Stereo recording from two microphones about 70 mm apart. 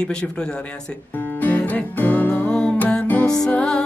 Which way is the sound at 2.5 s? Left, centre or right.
Centre.